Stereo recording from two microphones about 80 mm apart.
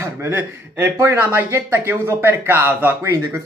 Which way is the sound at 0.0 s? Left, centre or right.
Right.